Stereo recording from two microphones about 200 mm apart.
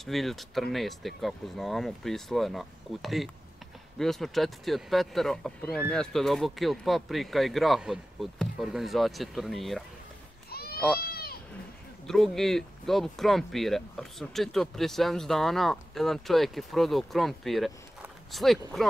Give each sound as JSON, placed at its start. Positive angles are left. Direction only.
{"t": 0.0, "sound": "speech", "side_deg": 0}
{"t": 10.5, "sound": "a sound", "side_deg": 50}
{"t": 11.0, "sound": "goat", "side_deg": 50}
{"t": 12.1, "sound": "speech", "side_deg": 0}